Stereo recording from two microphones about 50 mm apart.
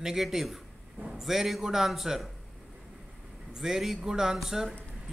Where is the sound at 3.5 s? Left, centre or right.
Centre.